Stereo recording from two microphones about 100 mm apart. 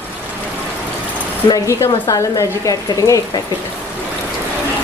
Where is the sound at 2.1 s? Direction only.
35° left (ahead or behind).